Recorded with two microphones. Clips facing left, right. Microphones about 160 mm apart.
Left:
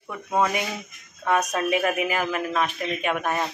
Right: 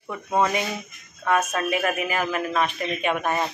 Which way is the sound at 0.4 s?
10° left (ahead or behind).